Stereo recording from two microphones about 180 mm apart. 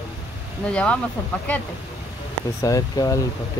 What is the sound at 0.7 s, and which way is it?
Speech, 5° left (ahead or behind).